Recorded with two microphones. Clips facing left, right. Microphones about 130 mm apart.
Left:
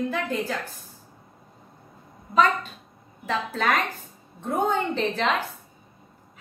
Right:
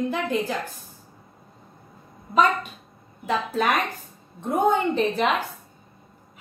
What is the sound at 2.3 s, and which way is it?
A woman's voice, 15° right (ahead or behind).